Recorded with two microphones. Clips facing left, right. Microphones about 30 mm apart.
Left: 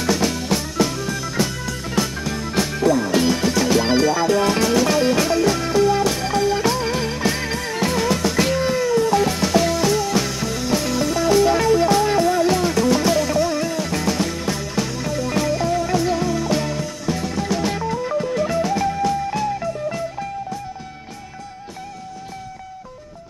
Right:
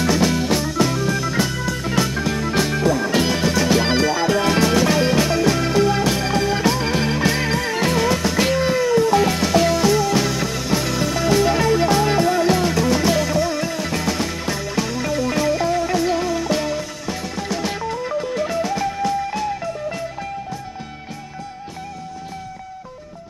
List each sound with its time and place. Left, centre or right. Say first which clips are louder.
0.0 s music: right 3 dB; centre